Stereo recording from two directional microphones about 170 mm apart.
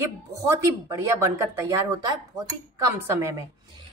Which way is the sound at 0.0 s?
15° right (ahead or behind).